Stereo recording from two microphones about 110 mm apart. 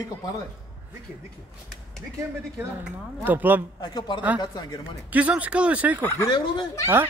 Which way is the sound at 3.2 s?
15° right (ahead or behind).